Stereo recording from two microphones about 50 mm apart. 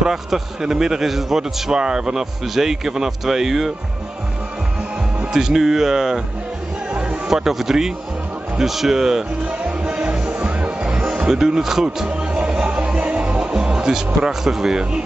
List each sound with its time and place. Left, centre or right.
0.0 s a man's voice: centre
5.2 s a man's voice: centre
6.9 s music: centre
7.2 s a man's voice: centre
9.9 s music: centre
11.2 s a man's voice: centre
12.1 s music: centre